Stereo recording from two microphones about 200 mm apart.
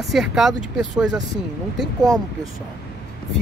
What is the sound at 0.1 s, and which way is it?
Speech, centre (ahead or behind).